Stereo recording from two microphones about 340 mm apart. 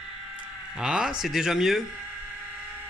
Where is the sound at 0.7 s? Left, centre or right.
Centre.